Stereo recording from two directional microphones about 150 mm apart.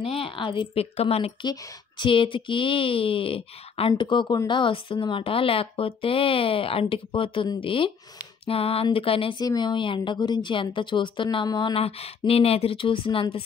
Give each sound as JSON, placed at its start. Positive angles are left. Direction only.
{"t": 0.0, "sound": "speech", "side_deg": 35}